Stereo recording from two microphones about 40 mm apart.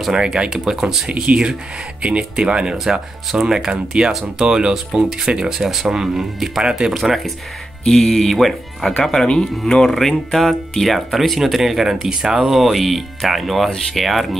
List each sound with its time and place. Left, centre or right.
0.2 s speech: right
1.2 s speech: right
2.8 s speech: centre
3.9 s speech: right; by 6.6 s centre
6.6 s speech: right
7.8 s speech: centre
9.0 s speech: centre